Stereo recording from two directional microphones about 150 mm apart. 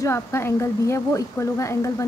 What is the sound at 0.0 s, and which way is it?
A woman's voice, 15° left (ahead or behind).